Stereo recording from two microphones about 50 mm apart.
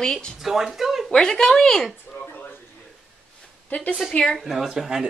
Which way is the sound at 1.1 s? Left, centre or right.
Centre.